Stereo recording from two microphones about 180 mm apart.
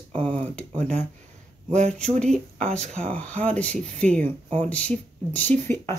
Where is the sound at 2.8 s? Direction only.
40° right (ahead or behind).